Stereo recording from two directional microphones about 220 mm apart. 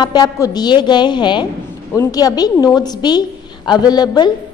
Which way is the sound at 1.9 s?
15° left (ahead or behind).